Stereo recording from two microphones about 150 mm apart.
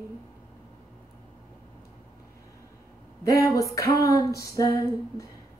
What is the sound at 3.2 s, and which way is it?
Speech, 20° left (ahead or behind).